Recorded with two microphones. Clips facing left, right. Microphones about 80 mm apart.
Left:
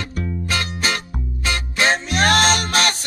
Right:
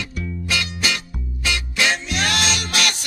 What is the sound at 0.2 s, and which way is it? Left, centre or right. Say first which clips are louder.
Music: left 2 dB; left.